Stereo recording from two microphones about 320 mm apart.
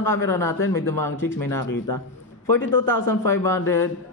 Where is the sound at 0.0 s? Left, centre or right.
Centre.